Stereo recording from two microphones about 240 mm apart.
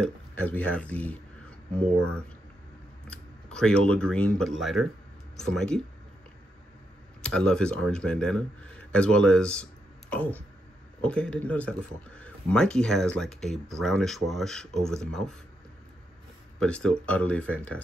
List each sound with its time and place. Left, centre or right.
0.0 s speech: centre
3.1 s speech: centre
7.2 s speech: centre
16.6 s speech: centre